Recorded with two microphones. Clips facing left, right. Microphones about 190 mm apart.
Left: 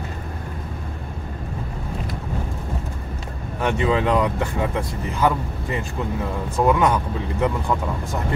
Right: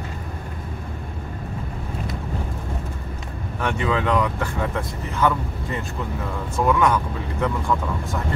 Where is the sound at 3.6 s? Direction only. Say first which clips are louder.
Left 3 dB; 25° left (ahead or behind).